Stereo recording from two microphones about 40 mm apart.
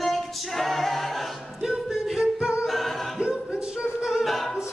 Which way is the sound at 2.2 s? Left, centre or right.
Right.